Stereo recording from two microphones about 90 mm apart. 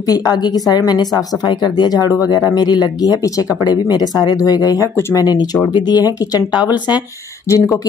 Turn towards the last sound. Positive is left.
turn(degrees=35)  # may be behind; listen again after turning